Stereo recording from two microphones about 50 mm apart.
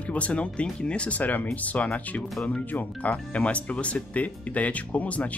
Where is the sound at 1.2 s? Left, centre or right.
Left.